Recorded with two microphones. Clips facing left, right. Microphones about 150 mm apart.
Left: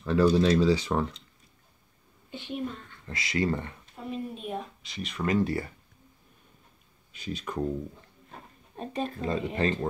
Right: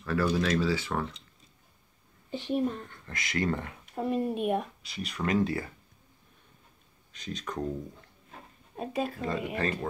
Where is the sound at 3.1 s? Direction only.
15° left (ahead or behind).